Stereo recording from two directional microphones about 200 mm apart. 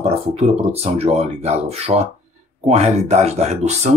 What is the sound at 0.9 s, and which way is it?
Speech, 30° right (ahead or behind).